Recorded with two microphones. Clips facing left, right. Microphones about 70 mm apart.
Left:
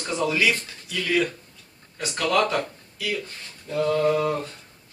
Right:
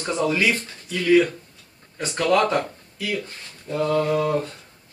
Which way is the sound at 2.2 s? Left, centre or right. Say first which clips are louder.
Right 3 dB; right.